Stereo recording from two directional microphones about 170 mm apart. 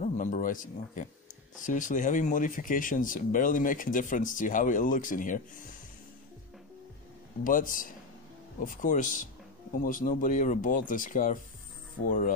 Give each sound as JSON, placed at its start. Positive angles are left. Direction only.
{"t": 0.0, "sound": "speech", "side_deg": 50}
{"t": 7.4, "sound": "speech", "side_deg": 55}
{"t": 12.0, "sound": "ratchet", "side_deg": 55}